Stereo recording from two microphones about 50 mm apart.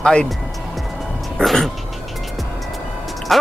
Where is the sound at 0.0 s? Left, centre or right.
Centre.